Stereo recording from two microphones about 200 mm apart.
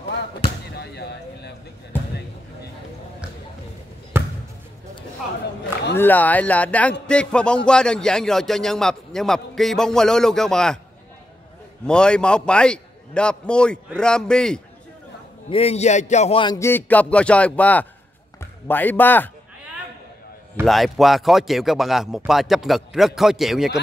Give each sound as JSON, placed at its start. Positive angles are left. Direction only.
{"t": 0.7, "sound": "basketball bounce", "side_deg": 55}
{"t": 4.1, "sound": "basketball bounce", "side_deg": -10}
{"t": 5.9, "sound": "speech", "side_deg": 10}
{"t": 11.8, "sound": "speech", "side_deg": 5}
{"t": 15.5, "sound": "a man's voice", "side_deg": 30}
{"t": 16.5, "sound": "speech", "side_deg": 10}
{"t": 20.6, "sound": "speech", "side_deg": 0}